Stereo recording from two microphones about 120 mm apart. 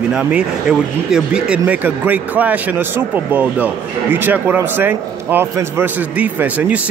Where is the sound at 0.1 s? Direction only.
5° right (ahead or behind).